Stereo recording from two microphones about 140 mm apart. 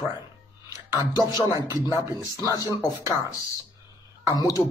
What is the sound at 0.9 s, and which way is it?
Speech, 30° left (ahead or behind).